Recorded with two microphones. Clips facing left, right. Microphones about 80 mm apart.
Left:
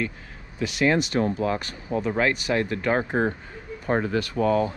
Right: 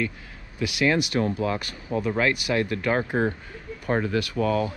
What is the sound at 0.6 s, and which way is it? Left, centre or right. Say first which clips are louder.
Speech: left 1 dB; left.